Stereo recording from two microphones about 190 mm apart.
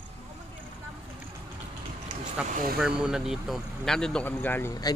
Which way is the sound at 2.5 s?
50° right (ahead or behind).